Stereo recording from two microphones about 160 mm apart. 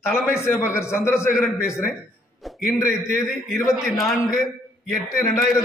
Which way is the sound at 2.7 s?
15° left (ahead or behind).